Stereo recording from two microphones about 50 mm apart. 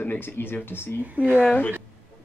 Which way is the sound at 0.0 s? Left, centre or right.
Left.